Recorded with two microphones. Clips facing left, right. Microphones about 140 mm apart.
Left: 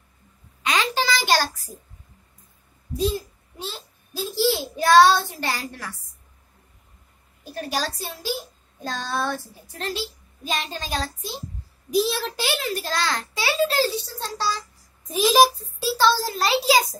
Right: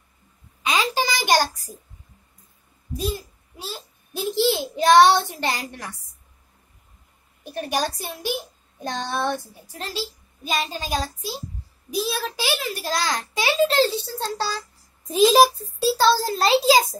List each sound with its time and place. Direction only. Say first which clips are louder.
0.7 s a sound: even; 10° right (ahead or behind)
3.1 s child singing: left 2 dB; 10° right (ahead or behind)
4.1 s a child's voice: right 1 dB; 20° right (ahead or behind)
7.4 s a child's voice: right 3 dB; 20° right (ahead or behind)
10.4 s a child's voice: right 2 dB; 5° right (ahead or behind); by 16.8 s 25° right (ahead or behind)